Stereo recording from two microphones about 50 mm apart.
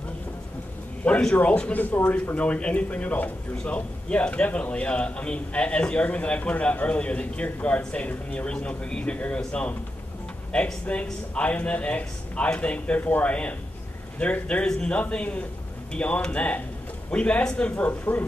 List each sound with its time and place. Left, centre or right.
1.3 s a man's voice: left
14.7 s speech: centre
15.0 s a man's voice: left